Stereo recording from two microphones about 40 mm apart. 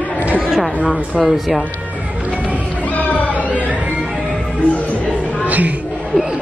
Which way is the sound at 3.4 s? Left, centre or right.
Right.